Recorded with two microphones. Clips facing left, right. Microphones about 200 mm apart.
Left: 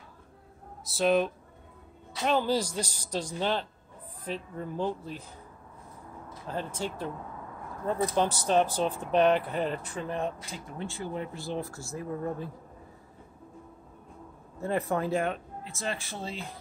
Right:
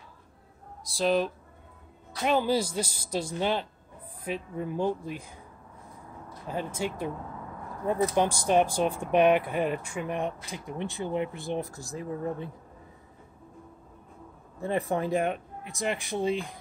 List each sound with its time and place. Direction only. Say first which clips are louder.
0.8 s speech: left 1 dB; centre (ahead or behind)
2.2 s speech: right 1 dB; 10° right (ahead or behind)
6.4 s speech: right 2 dB; 10° right (ahead or behind)
14.6 s speech: right 1 dB; 15° right (ahead or behind)